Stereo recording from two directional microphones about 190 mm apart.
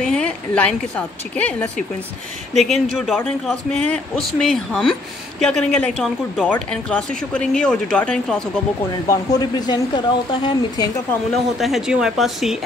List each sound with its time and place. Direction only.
0.0 s a woman's voice: 5° left (ahead or behind)
9.0 s speech: 20° left (ahead or behind)
11.5 s speech: centre (ahead or behind)